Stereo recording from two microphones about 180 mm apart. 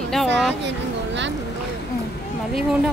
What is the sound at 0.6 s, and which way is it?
Speech, 80° right.